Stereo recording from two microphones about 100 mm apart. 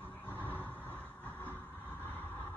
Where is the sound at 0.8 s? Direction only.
15° left (ahead or behind).